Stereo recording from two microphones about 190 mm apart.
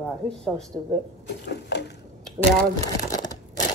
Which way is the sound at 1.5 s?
65° left (ahead or behind).